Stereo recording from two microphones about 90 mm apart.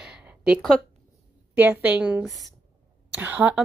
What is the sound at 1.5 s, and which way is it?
Speech, 20° right (ahead or behind).